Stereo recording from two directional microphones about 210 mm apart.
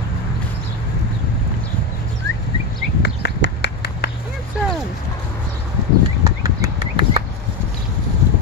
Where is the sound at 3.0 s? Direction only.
55° left (ahead or behind).